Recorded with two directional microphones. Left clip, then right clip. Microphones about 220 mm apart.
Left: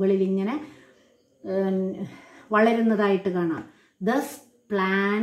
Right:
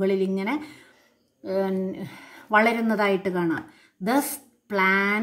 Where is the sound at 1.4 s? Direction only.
40° right (ahead or behind).